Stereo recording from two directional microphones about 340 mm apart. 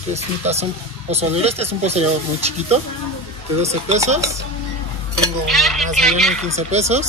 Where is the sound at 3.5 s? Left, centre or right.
Centre.